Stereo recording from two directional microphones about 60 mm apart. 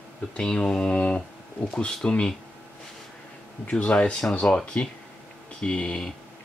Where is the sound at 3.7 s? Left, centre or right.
Left.